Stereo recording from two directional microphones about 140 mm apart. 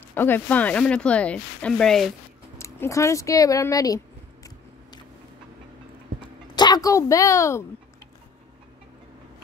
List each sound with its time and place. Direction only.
0.1 s speech: 15° left (ahead or behind)
2.5 s speech: 20° left (ahead or behind)
6.2 s a sound: 30° left (ahead or behind)